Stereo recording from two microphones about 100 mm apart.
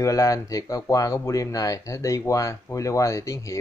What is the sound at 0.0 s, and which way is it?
Speech, 30° left (ahead or behind).